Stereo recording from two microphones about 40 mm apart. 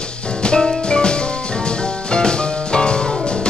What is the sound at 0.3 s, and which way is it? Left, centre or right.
Music, centre.